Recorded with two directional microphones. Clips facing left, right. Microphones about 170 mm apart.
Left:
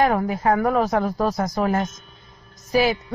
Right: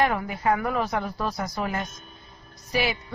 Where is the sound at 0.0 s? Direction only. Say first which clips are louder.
Left 5 dB; 40° left (ahead or behind).